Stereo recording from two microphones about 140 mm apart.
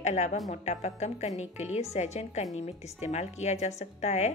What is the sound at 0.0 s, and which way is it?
Speech, 55° left (ahead or behind).